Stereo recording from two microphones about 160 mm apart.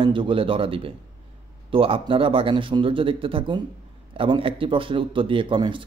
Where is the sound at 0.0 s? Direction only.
30° right (ahead or behind).